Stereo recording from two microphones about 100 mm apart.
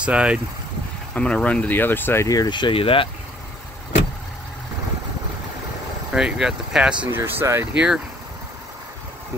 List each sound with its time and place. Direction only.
0.0 s speech: 10° right (ahead or behind)
1.1 s speech: 10° left (ahead or behind)
2.2 s speech: 40° left (ahead or behind); by 3.1 s 65° left (ahead or behind)
6.1 s speech: 5° right (ahead or behind)
7.1 s speech: 20° right (ahead or behind)
7.7 s speech: 10° right (ahead or behind)